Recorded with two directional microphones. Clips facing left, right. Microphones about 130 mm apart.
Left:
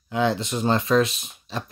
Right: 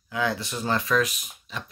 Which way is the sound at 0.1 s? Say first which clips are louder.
Left 5 dB; 25° left (ahead or behind).